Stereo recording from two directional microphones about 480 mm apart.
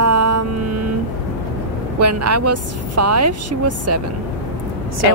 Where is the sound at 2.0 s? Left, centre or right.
Right.